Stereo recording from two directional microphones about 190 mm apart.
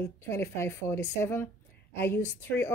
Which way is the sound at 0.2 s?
15° left (ahead or behind).